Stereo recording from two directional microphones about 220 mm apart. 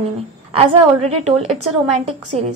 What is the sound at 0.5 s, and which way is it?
A woman's voice, 30° right (ahead or behind).